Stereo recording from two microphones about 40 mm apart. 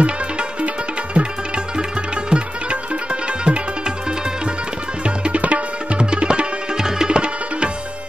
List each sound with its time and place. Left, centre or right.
0.0 s music: right
5.0 s tabla: right